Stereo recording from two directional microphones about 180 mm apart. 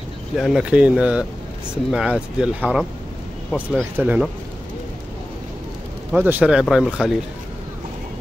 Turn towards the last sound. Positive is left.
turn(degrees=-5)  # may be behind; listen again after turning